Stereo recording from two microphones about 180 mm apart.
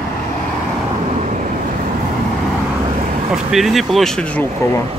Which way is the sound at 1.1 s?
40° right (ahead or behind).